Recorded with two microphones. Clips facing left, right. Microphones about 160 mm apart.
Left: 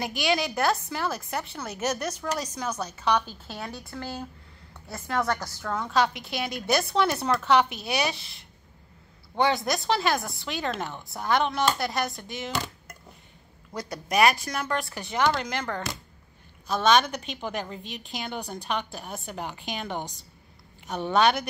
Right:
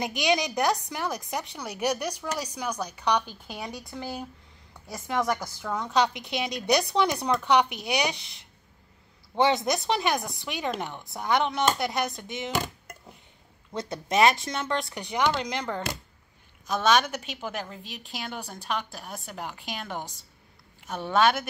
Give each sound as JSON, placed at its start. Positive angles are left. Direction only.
{"t": 0.0, "sound": "speech", "side_deg": -20}
{"t": 13.7, "sound": "a woman's voice", "side_deg": -25}